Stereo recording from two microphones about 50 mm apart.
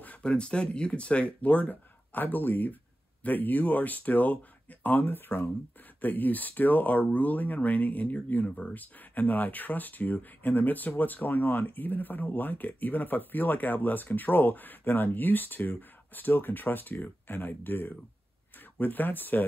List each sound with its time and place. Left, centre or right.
0.0 s a sound: left
0.3 s speech: centre; by 5.5 s left
5.9 s speech: left
8.5 s speech: left
8.7 s speech: left